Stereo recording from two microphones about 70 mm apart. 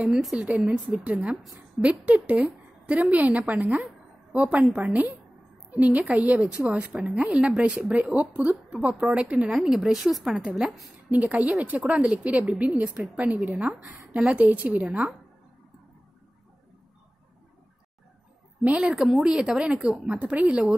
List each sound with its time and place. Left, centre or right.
0.4 s a woman's voice: centre
1.3 s a woman's voice: centre
1.8 s a woman's voice: centre
11.1 s a woman's voice: right
18.6 s a woman's voice: centre